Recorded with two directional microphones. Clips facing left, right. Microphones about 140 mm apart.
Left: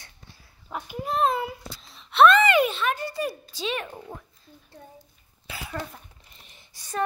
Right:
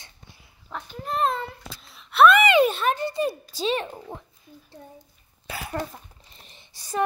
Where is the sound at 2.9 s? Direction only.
25° right (ahead or behind).